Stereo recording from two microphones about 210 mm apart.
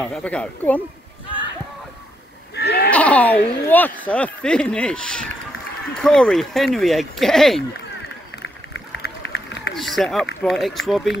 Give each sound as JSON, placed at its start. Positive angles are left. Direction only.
{"t": 0.0, "sound": "speech", "side_deg": 5}
{"t": 2.5, "sound": "sheep", "side_deg": 50}
{"t": 2.9, "sound": "speech", "side_deg": 5}
{"t": 8.9, "sound": "run", "side_deg": 55}
{"t": 9.8, "sound": "a sound", "side_deg": 0}
{"t": 10.4, "sound": "speech", "side_deg": 0}